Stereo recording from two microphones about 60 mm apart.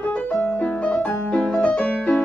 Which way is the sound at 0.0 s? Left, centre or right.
Left.